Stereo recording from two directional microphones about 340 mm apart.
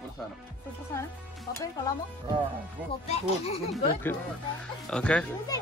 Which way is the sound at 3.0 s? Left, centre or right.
Centre.